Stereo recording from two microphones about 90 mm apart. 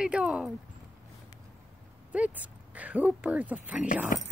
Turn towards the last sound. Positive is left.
turn(degrees=-15)  # may be behind; listen again after turning